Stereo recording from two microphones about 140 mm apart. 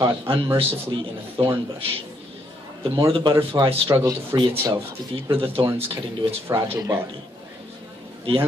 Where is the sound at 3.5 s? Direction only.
35° right (ahead or behind).